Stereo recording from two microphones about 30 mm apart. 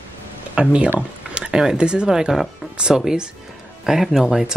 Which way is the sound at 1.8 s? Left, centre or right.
Right.